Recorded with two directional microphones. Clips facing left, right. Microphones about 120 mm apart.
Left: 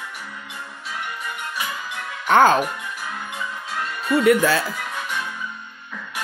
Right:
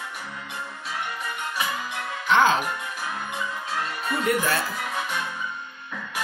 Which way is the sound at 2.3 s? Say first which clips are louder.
Left 5 dB; 45° left (ahead or behind).